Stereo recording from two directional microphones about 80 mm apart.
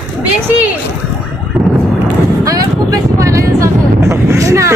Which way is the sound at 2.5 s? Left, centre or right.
Right.